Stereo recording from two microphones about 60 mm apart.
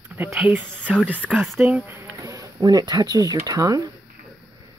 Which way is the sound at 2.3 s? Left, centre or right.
Right.